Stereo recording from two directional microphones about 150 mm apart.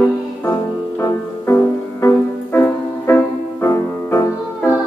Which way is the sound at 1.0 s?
20° left (ahead or behind).